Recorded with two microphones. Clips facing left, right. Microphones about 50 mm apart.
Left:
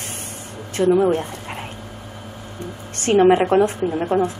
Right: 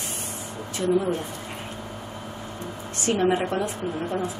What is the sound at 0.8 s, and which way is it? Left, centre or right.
Speech, left.